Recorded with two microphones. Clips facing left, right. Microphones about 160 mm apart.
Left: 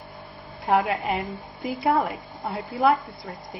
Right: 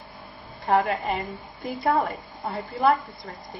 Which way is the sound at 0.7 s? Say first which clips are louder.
Even; 5° left (ahead or behind).